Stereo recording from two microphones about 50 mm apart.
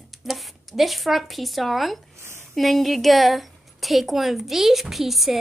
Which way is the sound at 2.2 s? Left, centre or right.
Right.